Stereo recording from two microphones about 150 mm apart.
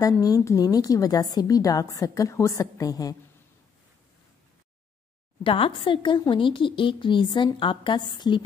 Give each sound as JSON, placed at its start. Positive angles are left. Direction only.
{"t": 0.0, "sound": "a woman's voice", "side_deg": 25}
{"t": 5.4, "sound": "speech", "side_deg": 35}